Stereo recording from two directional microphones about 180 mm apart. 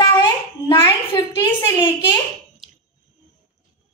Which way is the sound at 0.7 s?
25° left (ahead or behind).